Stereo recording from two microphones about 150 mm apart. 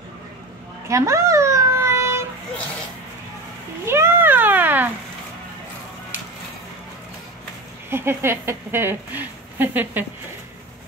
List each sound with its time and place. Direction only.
0.8 s a sound: 20° right (ahead or behind)
3.8 s cat: 15° right (ahead or behind)
7.9 s a woman's voice: 15° right (ahead or behind)